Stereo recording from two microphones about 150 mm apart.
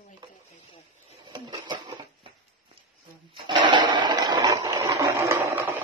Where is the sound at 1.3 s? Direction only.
30° right (ahead or behind).